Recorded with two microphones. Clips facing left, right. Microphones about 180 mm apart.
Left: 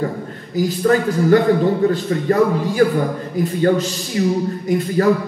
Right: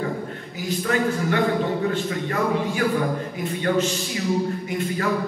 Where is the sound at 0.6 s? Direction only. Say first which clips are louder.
Left 8 dB; 35° left (ahead or behind).